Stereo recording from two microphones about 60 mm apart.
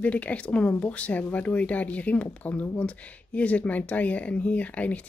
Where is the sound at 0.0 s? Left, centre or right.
Left.